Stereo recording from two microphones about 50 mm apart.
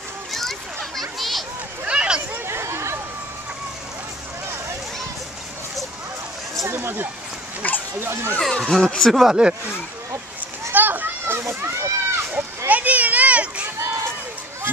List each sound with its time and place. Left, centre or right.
0.3 s children playing: centre
1.9 s a sound: centre
2.4 s chatter: right
6.7 s speech: right
7.6 s speech: left
8.0 s speech: right
8.4 s speech: centre
9.1 s speech: centre
10.7 s children playing: right
11.4 s speech: right
12.3 s children playing: right